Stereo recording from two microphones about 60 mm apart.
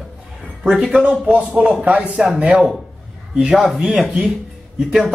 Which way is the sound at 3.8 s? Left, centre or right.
Centre.